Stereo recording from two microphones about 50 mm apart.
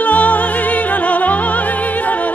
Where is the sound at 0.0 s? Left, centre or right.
Left.